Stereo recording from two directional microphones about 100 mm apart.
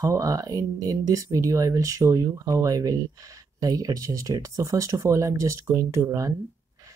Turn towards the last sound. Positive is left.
turn(degrees=-30)  # may be behind; listen again after turning